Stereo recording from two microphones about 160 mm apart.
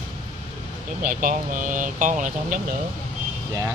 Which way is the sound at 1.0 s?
60° right (ahead or behind).